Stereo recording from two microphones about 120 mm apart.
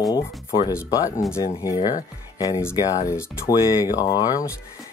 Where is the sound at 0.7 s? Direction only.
30° left (ahead or behind).